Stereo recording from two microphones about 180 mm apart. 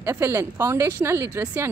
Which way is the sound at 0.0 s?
15° right (ahead or behind).